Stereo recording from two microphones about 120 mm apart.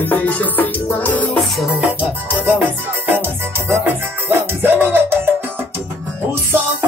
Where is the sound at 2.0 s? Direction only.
15° right (ahead or behind).